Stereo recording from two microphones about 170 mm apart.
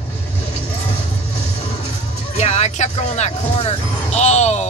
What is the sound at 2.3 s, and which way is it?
Speech, 40° left (ahead or behind).